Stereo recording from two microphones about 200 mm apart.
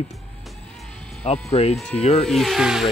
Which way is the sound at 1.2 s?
30° left (ahead or behind).